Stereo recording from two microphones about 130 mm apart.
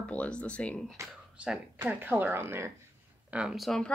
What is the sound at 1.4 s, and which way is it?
Speech, 10° right (ahead or behind).